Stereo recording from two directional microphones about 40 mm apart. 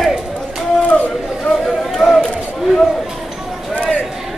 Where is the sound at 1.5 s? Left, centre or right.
Centre.